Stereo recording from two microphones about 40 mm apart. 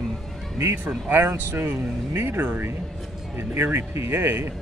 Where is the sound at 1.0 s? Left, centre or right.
Right.